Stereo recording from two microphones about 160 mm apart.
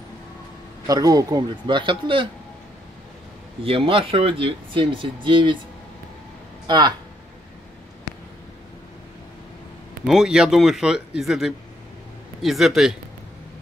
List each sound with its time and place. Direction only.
0.8 s a man's voice: 25° right (ahead or behind)
3.6 s speech: 35° right (ahead or behind)
10.0 s speech: 5° right (ahead or behind)